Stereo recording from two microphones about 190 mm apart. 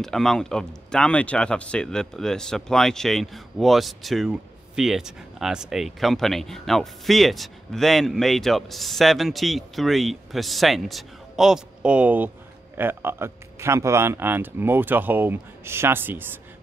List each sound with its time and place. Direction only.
0.0 s speech: centre (ahead or behind)